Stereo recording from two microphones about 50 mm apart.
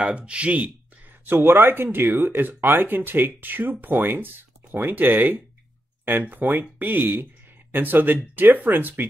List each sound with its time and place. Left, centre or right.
0.0 s speech: right
1.2 s speech: right